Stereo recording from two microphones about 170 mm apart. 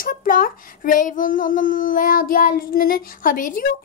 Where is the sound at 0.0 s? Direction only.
55° left (ahead or behind).